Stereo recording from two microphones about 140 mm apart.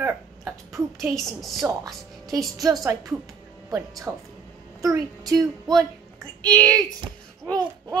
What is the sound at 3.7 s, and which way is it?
A woman's voice, 25° right (ahead or behind).